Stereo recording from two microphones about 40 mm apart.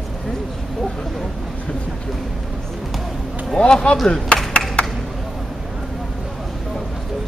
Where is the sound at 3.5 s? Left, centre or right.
Left.